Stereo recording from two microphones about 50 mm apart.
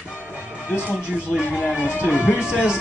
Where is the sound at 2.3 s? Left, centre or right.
Centre.